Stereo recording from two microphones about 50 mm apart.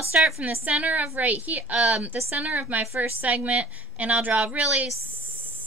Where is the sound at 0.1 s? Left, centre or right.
Right.